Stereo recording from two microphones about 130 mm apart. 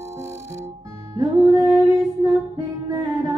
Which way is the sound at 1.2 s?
25° right (ahead or behind).